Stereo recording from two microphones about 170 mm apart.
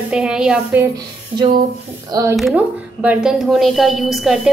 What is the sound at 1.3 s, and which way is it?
Speech, 25° right (ahead or behind).